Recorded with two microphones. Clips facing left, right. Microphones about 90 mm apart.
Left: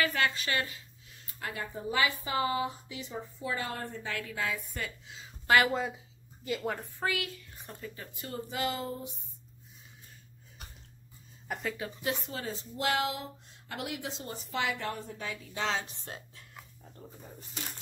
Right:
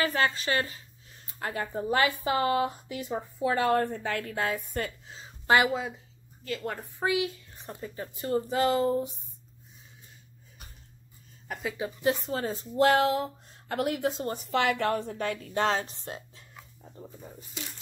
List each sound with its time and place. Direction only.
0.0 s a woman's voice: 35° right (ahead or behind)
5.7 s a woman's voice: centre (ahead or behind)
7.0 s speech: 20° right (ahead or behind)
7.6 s speech: 30° right (ahead or behind)
11.6 s speech: 20° right (ahead or behind)
12.1 s a woman's voice: 35° right (ahead or behind)